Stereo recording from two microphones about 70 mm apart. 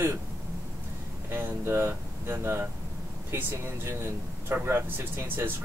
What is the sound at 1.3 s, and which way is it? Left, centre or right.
Speech, right.